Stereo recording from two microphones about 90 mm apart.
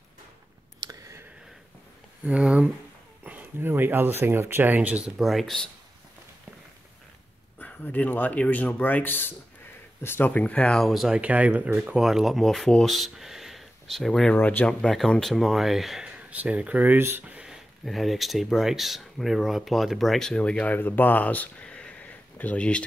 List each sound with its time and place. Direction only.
2.2 s speech: 10° right (ahead or behind)
5.1 s speech: centre (ahead or behind)
7.6 s speech: 20° left (ahead or behind)
10.8 s speech: centre (ahead or behind)
11.1 s speech: 15° right (ahead or behind); by 14.3 s 5° left (ahead or behind)
14.3 s speech: 20° left (ahead or behind)
14.8 s speech: 5° left (ahead or behind)
16.2 s speech: 15° right (ahead or behind)
17.4 s speech: centre (ahead or behind)